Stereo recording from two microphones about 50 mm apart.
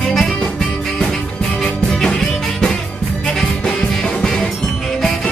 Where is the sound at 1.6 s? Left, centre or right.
Centre.